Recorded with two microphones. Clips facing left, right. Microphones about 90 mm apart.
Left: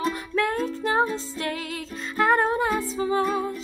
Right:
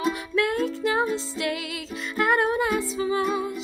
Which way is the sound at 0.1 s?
35° left (ahead or behind).